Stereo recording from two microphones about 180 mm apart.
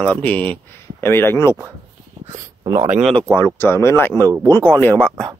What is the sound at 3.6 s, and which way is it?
Speech, 15° left (ahead or behind).